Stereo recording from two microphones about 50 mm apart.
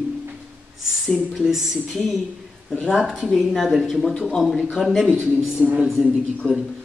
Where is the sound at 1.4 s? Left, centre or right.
Centre.